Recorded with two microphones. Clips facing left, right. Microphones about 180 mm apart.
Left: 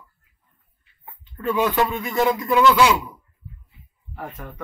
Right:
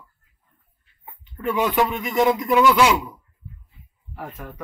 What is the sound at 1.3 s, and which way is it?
Speech, 15° right (ahead or behind).